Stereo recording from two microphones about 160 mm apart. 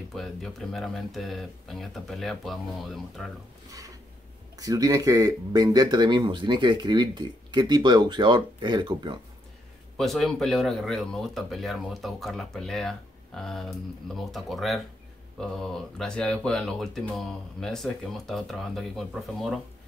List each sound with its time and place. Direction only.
0.1 s speech: centre (ahead or behind)
4.6 s speech: 20° right (ahead or behind)
9.9 s speech: centre (ahead or behind)